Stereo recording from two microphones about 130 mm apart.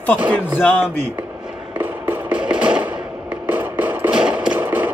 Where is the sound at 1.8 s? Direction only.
15° right (ahead or behind).